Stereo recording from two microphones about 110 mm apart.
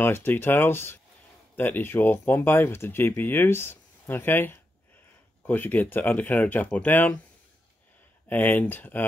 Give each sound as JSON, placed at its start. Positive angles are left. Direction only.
{"t": 0.0, "sound": "speech", "side_deg": 20}
{"t": 8.3, "sound": "speech", "side_deg": 15}